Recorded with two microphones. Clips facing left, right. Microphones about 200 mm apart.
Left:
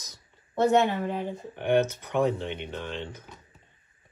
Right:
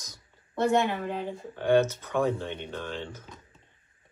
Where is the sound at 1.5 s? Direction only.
20° left (ahead or behind).